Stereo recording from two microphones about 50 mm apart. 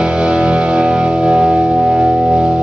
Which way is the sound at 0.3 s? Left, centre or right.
Centre.